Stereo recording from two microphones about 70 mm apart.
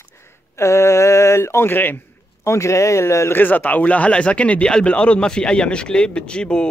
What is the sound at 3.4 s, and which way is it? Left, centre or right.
Speech, left.